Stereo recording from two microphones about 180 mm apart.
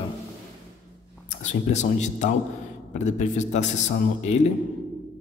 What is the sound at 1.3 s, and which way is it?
A man's voice, 40° left (ahead or behind).